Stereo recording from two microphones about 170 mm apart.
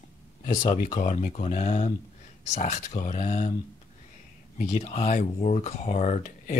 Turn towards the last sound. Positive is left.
turn(degrees=45)  # may be behind; listen again after turning